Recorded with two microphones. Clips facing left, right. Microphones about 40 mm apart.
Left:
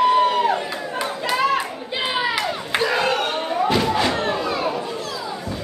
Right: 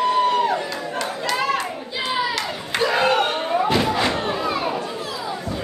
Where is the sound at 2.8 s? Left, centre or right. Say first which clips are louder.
Right 3 dB; centre.